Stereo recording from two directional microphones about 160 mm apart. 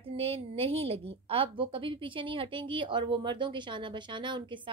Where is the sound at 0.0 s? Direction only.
40° right (ahead or behind).